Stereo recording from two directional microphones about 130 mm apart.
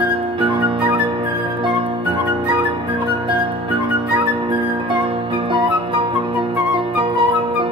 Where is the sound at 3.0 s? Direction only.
40° right (ahead or behind).